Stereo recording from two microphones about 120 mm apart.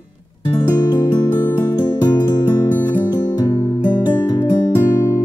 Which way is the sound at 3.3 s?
40° left (ahead or behind).